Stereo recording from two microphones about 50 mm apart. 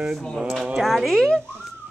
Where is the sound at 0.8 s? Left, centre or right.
Centre.